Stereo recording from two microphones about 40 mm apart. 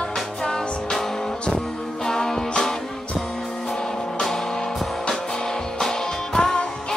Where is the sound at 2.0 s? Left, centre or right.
Centre.